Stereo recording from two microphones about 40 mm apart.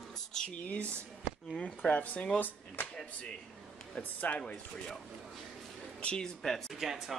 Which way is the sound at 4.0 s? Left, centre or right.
Left.